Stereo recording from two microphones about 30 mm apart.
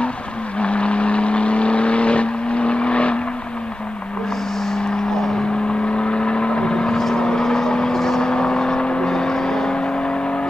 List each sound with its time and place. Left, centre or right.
0.6 s vehicle: left
5.9 s vehicle: left